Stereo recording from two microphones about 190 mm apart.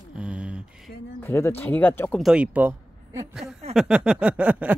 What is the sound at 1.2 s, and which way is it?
Speech, 10° left (ahead or behind).